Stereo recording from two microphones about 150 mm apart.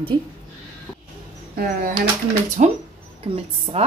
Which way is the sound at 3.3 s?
35° right (ahead or behind).